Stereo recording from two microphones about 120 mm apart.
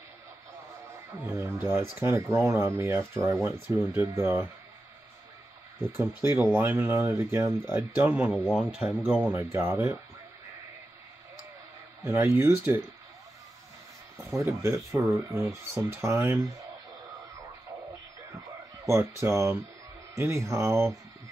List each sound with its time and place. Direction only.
1.2 s speech: 25° right (ahead or behind)
5.9 s speech: 15° right (ahead or behind)
9.3 s speech: 20° right (ahead or behind)
12.0 s speech: 20° right (ahead or behind)
14.1 s speech: 25° right (ahead or behind)
18.9 s speech: 20° right (ahead or behind)